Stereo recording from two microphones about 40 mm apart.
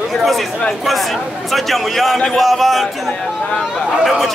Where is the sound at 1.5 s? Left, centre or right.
Centre.